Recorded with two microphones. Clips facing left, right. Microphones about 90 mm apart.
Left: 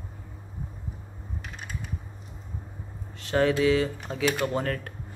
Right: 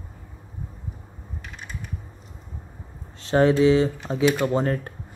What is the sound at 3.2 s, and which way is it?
Speech, 30° right (ahead or behind).